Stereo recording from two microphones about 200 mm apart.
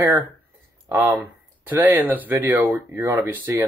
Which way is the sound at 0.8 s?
15° right (ahead or behind).